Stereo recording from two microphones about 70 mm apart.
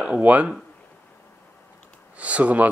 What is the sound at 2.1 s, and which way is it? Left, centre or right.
Speech, centre.